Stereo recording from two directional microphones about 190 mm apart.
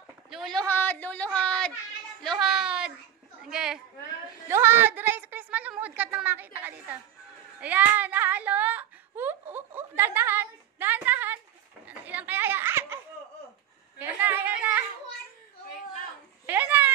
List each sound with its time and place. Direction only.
0.3 s a woman's voice: centre (ahead or behind)
7.6 s a sound: 10° right (ahead or behind)
11.9 s children playing: 10° right (ahead or behind)
13.9 s a woman's voice: 10° right (ahead or behind)
16.4 s speech: 10° right (ahead or behind)